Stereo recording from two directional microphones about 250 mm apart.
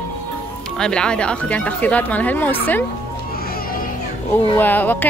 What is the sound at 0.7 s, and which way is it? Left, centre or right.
A woman's voice, centre.